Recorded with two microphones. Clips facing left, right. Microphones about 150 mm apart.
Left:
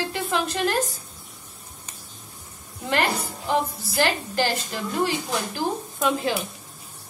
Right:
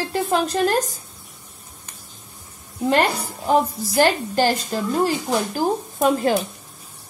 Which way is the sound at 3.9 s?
40° right (ahead or behind).